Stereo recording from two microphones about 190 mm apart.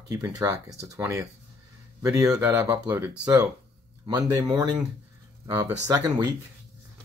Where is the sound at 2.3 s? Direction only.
15° right (ahead or behind).